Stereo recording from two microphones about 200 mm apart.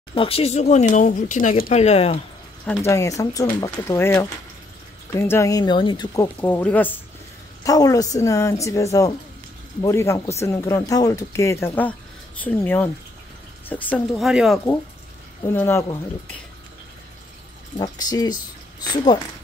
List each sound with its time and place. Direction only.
0.1 s speech: 25° left (ahead or behind)
2.6 s speech: 10° left (ahead or behind)
6.4 s speech: 10° left (ahead or behind)
15.4 s speech: 10° left (ahead or behind)
17.7 s speech: 20° left (ahead or behind)